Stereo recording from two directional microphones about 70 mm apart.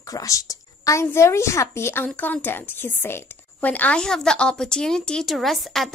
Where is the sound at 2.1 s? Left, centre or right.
Left.